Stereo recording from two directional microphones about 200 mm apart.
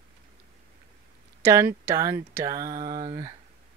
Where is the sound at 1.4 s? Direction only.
15° right (ahead or behind).